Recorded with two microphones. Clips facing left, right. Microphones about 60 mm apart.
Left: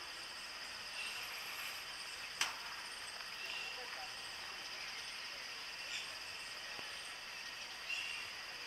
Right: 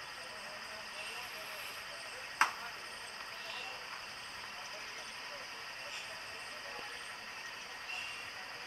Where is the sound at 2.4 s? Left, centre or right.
Right.